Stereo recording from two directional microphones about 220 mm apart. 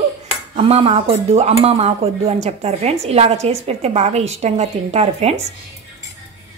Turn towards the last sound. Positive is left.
turn(degrees=-30)  # may be behind; listen again after turning